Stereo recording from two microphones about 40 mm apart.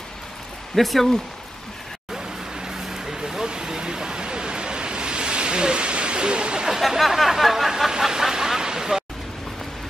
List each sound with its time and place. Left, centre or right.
0.7 s speech: centre
2.1 s vehicle: centre
6.7 s speech: centre
8.0 s vehicle: centre